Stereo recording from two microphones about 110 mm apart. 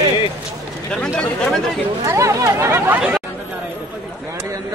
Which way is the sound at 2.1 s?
25° right (ahead or behind).